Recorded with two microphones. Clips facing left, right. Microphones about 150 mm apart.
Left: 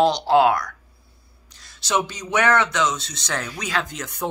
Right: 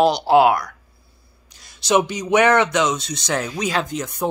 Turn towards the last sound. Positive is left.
turn(degrees=-30)  # may be behind; listen again after turning